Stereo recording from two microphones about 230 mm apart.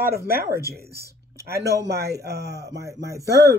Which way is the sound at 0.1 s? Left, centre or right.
Right.